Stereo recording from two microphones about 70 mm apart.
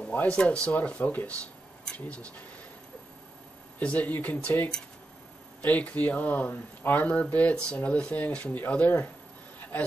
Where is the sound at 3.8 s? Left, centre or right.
Centre.